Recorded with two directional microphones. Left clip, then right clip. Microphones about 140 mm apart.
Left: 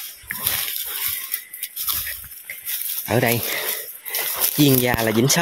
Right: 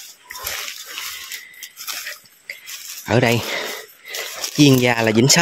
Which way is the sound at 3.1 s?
40° right (ahead or behind).